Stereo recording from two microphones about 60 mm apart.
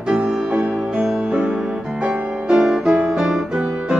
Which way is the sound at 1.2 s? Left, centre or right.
Centre.